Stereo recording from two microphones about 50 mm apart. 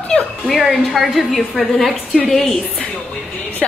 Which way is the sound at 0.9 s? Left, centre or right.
Centre.